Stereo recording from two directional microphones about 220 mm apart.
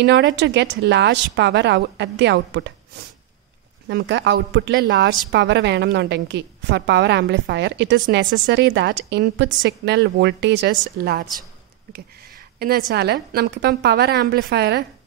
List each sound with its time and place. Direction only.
0.0 s a woman's voice: 55° right (ahead or behind)
3.8 s a woman's voice: 50° right (ahead or behind)
12.5 s a woman's voice: 45° right (ahead or behind)